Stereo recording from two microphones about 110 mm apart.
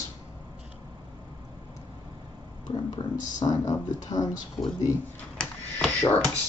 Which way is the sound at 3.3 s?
35° left (ahead or behind).